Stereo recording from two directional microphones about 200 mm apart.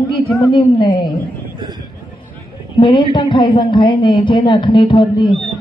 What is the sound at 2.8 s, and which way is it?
A woman's voice, 25° left (ahead or behind).